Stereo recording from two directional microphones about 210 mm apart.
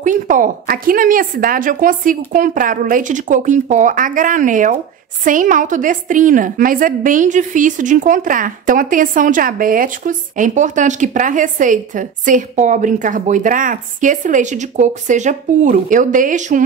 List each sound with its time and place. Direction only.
0.0 s a woman's voice: 40° right (ahead or behind)